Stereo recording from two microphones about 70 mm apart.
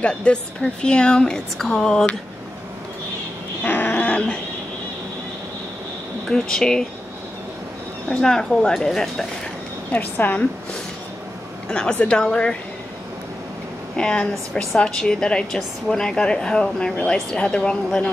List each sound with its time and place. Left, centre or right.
0.0 s a woman's voice: centre
3.6 s dog: left
6.3 s a woman's voice: centre
8.2 s a woman's voice: centre
9.9 s a woman's voice: left
11.7 s a woman's voice: centre
13.9 s a woman's voice: centre